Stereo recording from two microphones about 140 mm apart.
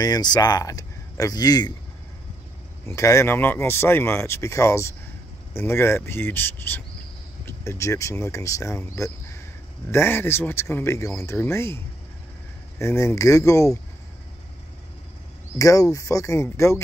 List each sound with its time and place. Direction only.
0.0 s speech: 30° left (ahead or behind)
2.9 s speech: 20° left (ahead or behind)
15.5 s speech: 25° left (ahead or behind)